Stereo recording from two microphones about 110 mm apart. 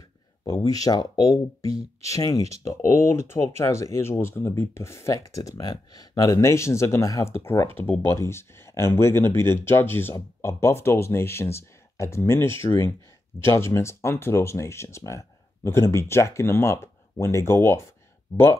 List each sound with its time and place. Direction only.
0.4 s speech: 35° left (ahead or behind)